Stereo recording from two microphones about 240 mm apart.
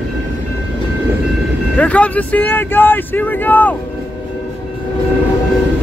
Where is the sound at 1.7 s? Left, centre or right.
Centre.